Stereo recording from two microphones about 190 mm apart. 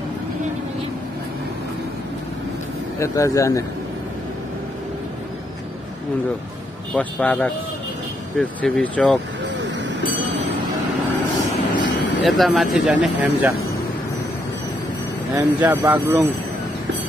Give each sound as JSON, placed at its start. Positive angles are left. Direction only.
{"t": 3.0, "sound": "speech", "side_deg": 15}
{"t": 7.0, "sound": "speech", "side_deg": 10}
{"t": 12.0, "sound": "vehicle", "side_deg": 70}
{"t": 12.3, "sound": "speech", "side_deg": 0}
{"t": 15.3, "sound": "speech", "side_deg": -10}